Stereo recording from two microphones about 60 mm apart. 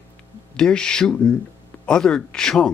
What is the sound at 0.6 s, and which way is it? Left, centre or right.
Speech, centre.